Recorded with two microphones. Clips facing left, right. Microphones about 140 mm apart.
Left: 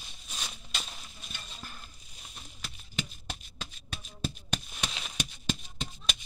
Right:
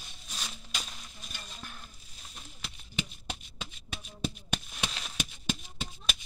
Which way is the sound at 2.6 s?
15° right (ahead or behind).